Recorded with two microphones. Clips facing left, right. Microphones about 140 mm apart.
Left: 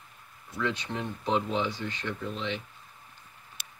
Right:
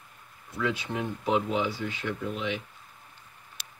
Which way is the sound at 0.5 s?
5° right (ahead or behind).